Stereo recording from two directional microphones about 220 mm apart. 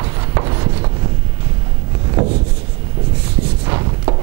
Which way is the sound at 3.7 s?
25° right (ahead or behind).